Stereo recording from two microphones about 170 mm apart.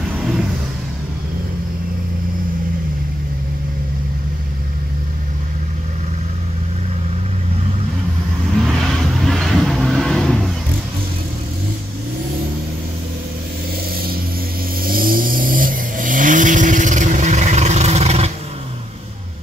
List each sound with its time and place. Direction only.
8.6 s vehicle: centre (ahead or behind)
14.9 s vehicle: 60° right (ahead or behind); by 18.3 s 40° right (ahead or behind)